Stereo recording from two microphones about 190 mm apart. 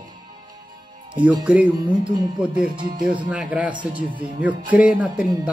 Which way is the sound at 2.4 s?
5° right (ahead or behind).